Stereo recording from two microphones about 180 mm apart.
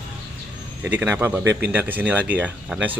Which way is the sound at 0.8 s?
10° right (ahead or behind).